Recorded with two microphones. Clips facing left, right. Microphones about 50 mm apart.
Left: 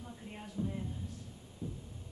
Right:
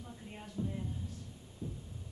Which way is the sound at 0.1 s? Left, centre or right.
Centre.